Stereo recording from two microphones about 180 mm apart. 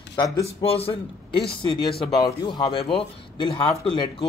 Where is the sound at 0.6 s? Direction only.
30° left (ahead or behind).